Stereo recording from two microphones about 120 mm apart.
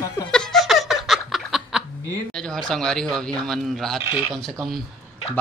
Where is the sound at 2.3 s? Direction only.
5° left (ahead or behind).